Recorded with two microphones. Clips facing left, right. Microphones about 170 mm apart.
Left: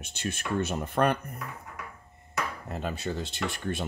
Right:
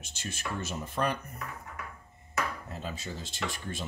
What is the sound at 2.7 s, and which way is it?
Speech, 60° left (ahead or behind).